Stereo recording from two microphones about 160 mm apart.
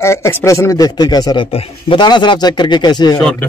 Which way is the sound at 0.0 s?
15° left (ahead or behind).